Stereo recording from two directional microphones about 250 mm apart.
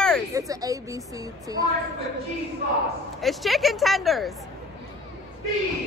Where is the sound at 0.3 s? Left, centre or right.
Centre.